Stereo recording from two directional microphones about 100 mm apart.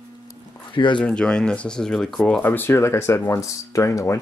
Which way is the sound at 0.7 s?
55° left (ahead or behind).